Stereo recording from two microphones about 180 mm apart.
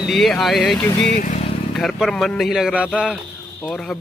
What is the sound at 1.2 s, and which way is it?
Speech, 45° left (ahead or behind).